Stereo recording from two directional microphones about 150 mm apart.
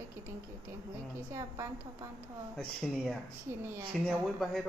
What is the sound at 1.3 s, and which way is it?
Speech, 20° right (ahead or behind).